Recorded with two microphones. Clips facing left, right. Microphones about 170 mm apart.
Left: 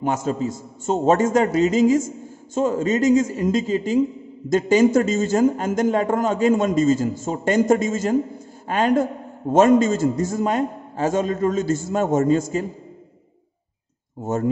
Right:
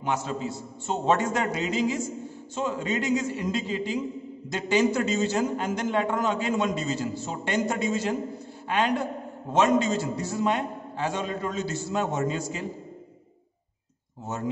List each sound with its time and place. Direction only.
0.0 s a man's voice: 45° left (ahead or behind)
14.2 s a man's voice: 50° left (ahead or behind)